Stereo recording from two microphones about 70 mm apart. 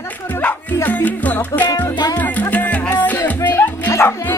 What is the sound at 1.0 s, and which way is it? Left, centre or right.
Music, left.